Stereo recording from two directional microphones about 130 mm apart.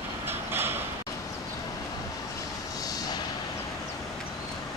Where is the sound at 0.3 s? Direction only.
15° right (ahead or behind).